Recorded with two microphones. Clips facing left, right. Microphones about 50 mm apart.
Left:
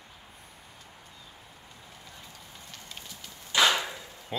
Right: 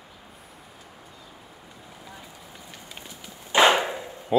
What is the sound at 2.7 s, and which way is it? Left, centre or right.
Fire, centre.